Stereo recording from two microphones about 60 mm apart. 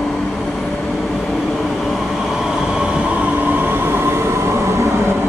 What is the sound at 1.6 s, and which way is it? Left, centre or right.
Train, centre.